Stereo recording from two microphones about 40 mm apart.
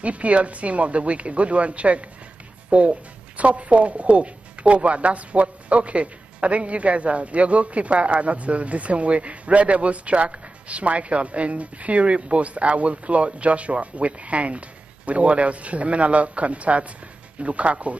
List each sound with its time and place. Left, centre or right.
0.0 s speech: right